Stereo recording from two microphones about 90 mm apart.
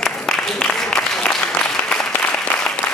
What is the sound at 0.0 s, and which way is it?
Applause, 10° left (ahead or behind).